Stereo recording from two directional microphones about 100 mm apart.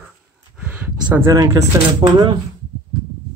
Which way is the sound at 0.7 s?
25° right (ahead or behind).